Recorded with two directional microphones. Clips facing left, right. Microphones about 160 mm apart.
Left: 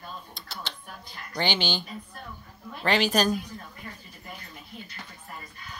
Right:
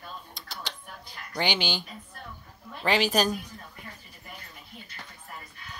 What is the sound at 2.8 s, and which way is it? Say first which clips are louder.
Speech: left 1 dB; 10° right (ahead or behind).